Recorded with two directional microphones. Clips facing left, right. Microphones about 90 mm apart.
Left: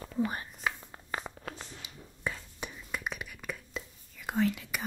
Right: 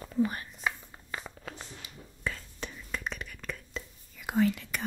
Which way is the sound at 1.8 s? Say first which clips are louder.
Even; 15° left (ahead or behind).